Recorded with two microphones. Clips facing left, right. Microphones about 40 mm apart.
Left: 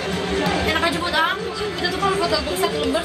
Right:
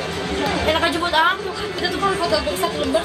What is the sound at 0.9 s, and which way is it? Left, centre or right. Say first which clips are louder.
Chatter: right 2 dB; right.